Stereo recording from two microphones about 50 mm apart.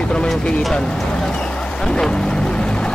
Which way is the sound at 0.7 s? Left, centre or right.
Centre.